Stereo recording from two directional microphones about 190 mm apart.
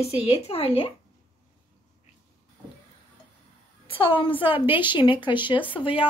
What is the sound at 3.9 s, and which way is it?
A woman's voice, 30° left (ahead or behind).